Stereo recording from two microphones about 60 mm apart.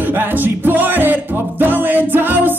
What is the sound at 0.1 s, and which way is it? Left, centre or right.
Music, right.